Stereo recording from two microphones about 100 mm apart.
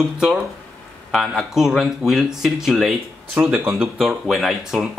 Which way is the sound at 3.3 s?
20° right (ahead or behind).